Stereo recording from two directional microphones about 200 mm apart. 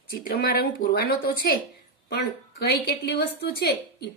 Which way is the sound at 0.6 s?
50° left (ahead or behind).